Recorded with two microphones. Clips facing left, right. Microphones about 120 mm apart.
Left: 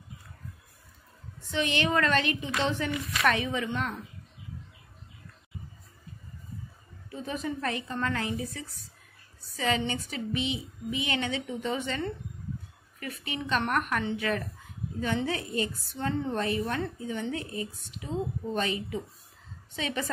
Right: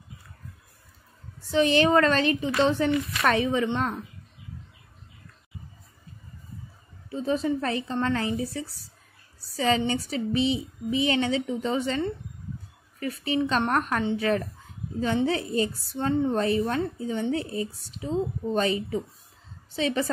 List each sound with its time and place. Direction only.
1.5 s a woman's voice: 35° right (ahead or behind)
7.1 s a woman's voice: 30° right (ahead or behind)